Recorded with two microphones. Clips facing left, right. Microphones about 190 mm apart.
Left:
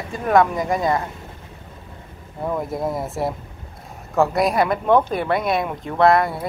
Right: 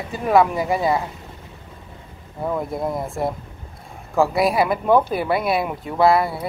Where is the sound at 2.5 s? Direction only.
Centre (ahead or behind).